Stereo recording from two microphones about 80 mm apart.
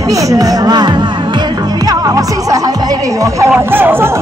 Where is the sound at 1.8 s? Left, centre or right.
Right.